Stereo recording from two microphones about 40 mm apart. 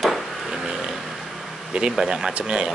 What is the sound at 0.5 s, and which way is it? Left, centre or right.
Vehicle, centre.